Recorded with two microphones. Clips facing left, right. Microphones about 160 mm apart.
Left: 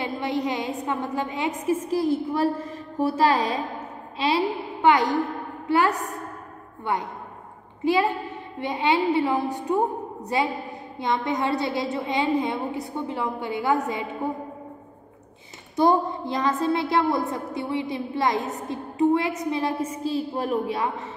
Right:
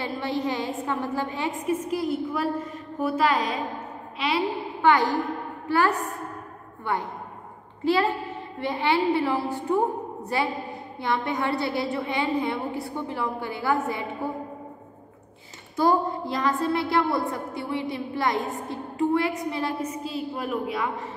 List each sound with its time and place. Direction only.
0.0 s a woman's voice: 20° left (ahead or behind)
1.9 s a woman's voice: 30° left (ahead or behind)
4.8 s a woman's voice: 20° left (ahead or behind)
15.7 s a woman's voice: 20° left (ahead or behind)
20.0 s a woman's voice: 35° left (ahead or behind)